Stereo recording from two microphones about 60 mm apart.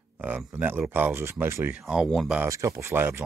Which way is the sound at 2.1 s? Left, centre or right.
Centre.